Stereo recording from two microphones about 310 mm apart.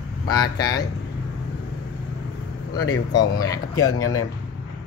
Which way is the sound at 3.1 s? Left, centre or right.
Centre.